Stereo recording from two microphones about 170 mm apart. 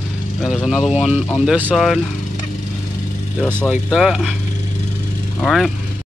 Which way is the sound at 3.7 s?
5° right (ahead or behind).